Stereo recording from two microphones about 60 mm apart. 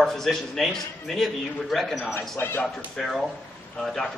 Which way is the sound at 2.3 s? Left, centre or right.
Left.